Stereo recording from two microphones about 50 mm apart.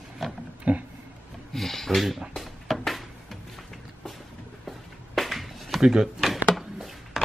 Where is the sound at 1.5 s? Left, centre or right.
Centre.